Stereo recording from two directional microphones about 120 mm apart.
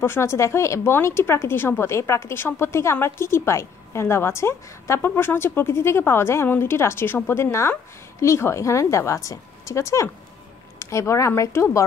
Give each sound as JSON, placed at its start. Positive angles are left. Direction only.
{"t": 0.0, "sound": "a woman's voice", "side_deg": 20}